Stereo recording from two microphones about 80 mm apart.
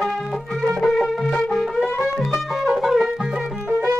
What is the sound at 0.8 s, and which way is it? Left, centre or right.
Music, centre.